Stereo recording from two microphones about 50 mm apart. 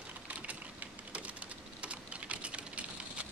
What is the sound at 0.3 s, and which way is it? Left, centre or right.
Typing, right.